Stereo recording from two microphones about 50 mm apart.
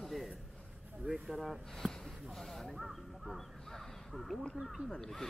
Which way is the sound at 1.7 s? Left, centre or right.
Centre.